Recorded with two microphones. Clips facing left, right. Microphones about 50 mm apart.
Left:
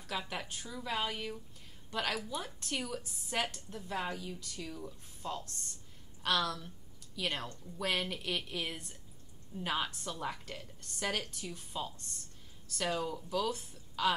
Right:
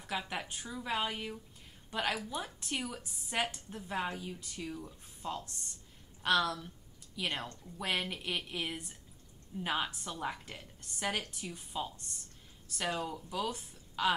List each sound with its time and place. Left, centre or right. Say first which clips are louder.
0.1 s speech: right 1 dB; centre